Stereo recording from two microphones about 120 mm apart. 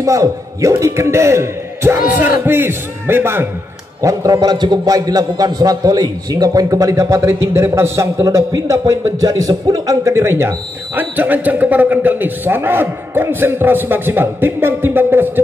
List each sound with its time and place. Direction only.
0.0 s a man's voice: 25° right (ahead or behind)